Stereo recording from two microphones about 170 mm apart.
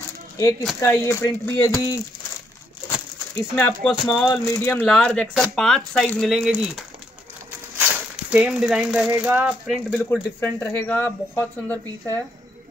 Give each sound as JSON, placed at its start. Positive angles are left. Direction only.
{"t": 0.4, "sound": "speech", "side_deg": 20}
{"t": 3.5, "sound": "speech", "side_deg": 10}
{"t": 4.8, "sound": "speech", "side_deg": 5}
{"t": 7.7, "sound": "a sound", "side_deg": -10}
{"t": 9.1, "sound": "speech", "side_deg": -10}
{"t": 9.8, "sound": "speech", "side_deg": 10}